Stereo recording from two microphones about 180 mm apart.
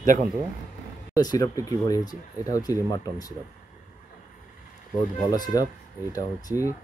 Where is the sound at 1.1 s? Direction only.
20° left (ahead or behind).